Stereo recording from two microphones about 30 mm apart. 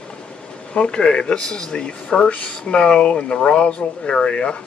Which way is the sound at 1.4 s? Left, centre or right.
Left.